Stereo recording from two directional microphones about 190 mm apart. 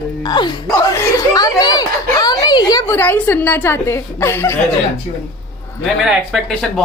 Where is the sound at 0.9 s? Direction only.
15° left (ahead or behind).